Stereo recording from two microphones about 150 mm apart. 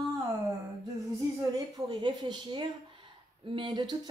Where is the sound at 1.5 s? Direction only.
30° right (ahead or behind).